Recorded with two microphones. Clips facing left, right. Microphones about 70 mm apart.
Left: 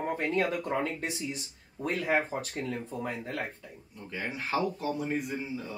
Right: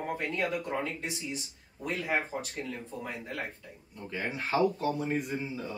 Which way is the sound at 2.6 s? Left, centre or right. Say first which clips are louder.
Left 4 dB; left.